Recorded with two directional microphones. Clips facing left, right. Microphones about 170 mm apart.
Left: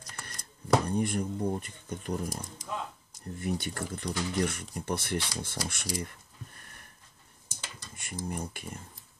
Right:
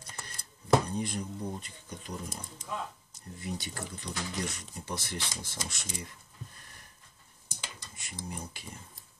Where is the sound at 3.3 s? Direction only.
55° left (ahead or behind).